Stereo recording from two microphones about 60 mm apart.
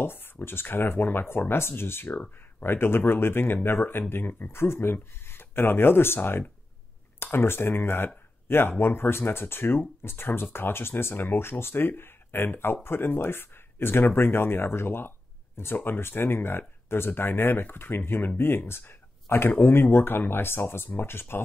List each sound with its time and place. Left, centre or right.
0.0 s speech: left